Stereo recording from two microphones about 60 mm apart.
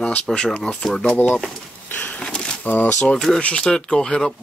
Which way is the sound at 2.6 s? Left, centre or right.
Left.